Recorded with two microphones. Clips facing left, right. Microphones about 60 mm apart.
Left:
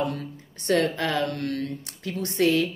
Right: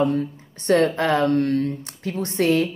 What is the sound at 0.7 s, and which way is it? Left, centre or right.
Speech, right.